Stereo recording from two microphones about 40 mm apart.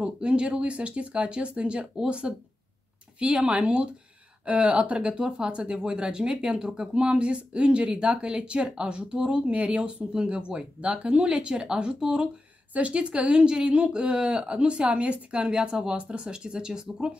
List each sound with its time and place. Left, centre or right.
0.0 s speech: right
3.3 s speech: right